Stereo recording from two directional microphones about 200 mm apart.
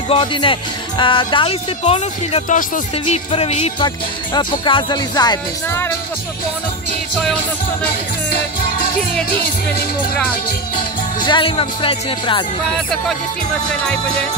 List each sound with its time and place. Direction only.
0.1 s speech: 25° left (ahead or behind)
9.3 s music: 50° left (ahead or behind)
11.2 s speech: 25° left (ahead or behind)
12.7 s music: centre (ahead or behind)